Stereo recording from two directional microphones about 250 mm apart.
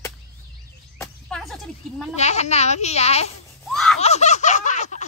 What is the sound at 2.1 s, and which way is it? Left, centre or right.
Speech, left.